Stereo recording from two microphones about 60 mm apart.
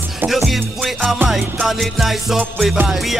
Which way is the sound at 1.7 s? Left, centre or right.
Centre.